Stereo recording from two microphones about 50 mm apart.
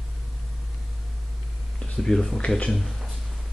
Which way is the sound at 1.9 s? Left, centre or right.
Centre.